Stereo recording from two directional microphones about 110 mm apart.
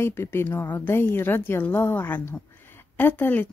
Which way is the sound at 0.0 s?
20° left (ahead or behind).